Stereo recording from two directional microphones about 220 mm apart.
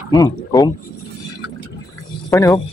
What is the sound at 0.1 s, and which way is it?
Speech, 15° left (ahead or behind).